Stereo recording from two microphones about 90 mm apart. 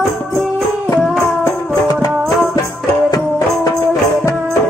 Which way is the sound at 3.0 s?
45° left (ahead or behind).